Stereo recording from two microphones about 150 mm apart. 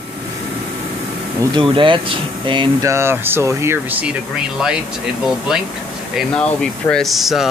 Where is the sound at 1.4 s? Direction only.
30° right (ahead or behind).